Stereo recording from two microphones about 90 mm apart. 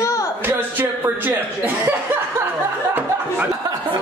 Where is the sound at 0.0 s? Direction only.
35° left (ahead or behind).